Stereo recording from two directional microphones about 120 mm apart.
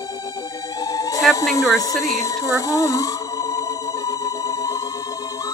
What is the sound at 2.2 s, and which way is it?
Music, 30° left (ahead or behind).